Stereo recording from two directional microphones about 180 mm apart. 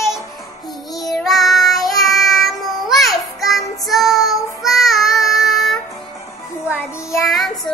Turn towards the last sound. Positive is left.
turn(degrees=0)  # may be behind; listen again after turning